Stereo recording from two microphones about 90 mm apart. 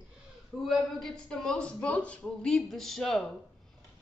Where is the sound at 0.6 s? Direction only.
Centre (ahead or behind).